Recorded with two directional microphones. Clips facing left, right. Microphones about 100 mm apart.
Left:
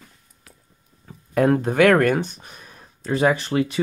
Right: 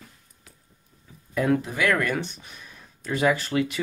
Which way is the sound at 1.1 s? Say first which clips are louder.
Left 7 dB; 55° left (ahead or behind).